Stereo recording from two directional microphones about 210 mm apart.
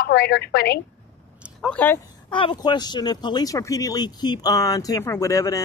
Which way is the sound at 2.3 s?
20° left (ahead or behind).